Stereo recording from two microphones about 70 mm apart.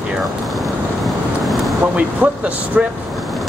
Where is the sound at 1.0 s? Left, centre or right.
Centre.